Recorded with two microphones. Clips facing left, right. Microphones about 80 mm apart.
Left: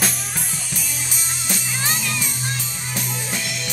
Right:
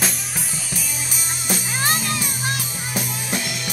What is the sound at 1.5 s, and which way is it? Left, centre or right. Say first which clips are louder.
Music: right 4 dB; right.